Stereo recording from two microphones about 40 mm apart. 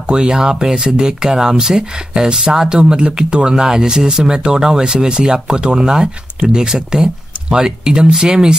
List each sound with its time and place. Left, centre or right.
0.0 s speech: right